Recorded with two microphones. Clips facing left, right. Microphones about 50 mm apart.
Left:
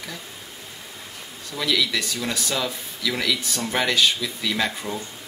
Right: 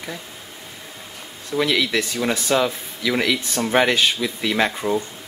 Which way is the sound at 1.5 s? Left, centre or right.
Right.